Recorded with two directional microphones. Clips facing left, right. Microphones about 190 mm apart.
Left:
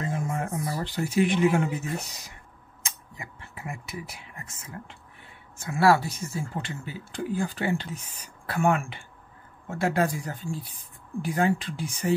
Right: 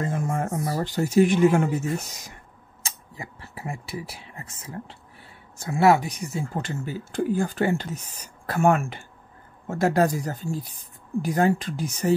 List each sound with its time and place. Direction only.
0.0 s a sound: 50° right (ahead or behind)
0.6 s speech: 45° right (ahead or behind)
2.8 s speech: 35° right (ahead or behind)
5.8 s speech: 20° right (ahead or behind)
6.4 s speech: 45° right (ahead or behind)